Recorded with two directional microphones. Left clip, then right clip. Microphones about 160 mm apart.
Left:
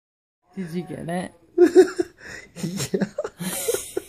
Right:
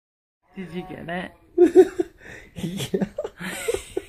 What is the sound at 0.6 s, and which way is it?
Speech, 90° left.